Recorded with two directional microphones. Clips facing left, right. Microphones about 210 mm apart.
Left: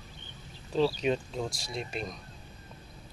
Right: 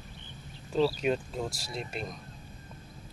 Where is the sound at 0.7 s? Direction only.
5° right (ahead or behind).